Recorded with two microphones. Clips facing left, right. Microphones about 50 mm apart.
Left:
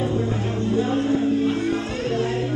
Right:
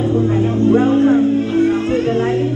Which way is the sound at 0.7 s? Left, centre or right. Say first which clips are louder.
Right 9 dB; right.